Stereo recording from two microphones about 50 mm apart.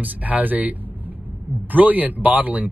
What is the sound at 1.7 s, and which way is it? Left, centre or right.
Speech, right.